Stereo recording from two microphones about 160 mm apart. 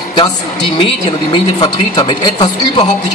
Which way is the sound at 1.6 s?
30° left (ahead or behind).